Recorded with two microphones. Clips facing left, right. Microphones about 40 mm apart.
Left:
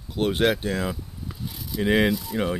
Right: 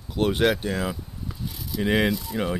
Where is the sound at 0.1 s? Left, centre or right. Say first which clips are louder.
Even; centre.